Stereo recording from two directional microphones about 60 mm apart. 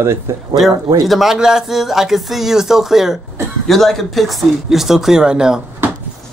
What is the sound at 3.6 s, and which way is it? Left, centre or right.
Speech, centre.